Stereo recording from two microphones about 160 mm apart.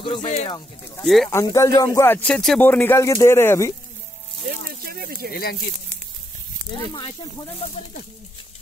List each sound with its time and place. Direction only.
0.2 s speech: 50° left (ahead or behind)
1.0 s speech: centre (ahead or behind)
1.3 s speech: 20° left (ahead or behind)
4.5 s a sound: 70° right (ahead or behind)
5.3 s speech: 70° left (ahead or behind)